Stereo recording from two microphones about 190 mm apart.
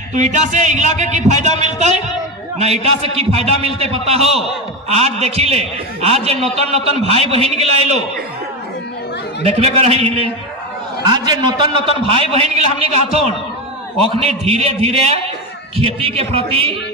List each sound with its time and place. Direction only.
0.1 s a man's voice: 40° right (ahead or behind)
9.4 s a man's voice: 35° right (ahead or behind)
14.2 s a man's voice: 30° right (ahead or behind)